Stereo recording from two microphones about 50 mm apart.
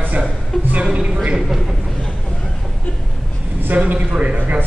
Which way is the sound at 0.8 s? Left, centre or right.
Centre.